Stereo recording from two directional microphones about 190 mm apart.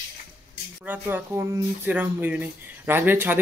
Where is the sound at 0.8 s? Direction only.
10° right (ahead or behind).